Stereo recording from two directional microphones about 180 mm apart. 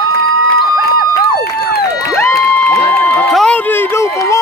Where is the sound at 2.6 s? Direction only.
15° left (ahead or behind).